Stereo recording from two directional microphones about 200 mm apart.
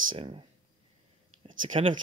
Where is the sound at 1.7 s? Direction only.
25° right (ahead or behind).